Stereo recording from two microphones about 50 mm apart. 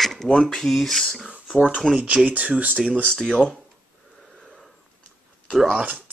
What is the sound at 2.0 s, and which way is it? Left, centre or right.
Speech, right.